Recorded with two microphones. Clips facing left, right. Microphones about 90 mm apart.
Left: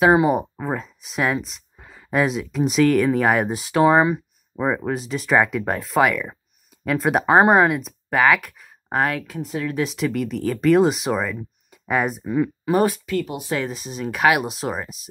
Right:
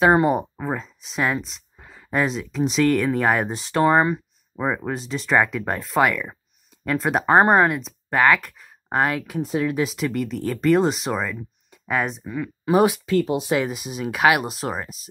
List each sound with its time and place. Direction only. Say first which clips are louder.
0.0 s speech: left 1 dB; 5° left (ahead or behind)
9.3 s speech: right 4 dB; 20° right (ahead or behind)
9.7 s speech: even; centre (ahead or behind)
13.0 s speech: right 4 dB; 30° right (ahead or behind)
13.6 s speech: right 2 dB; 10° right (ahead or behind)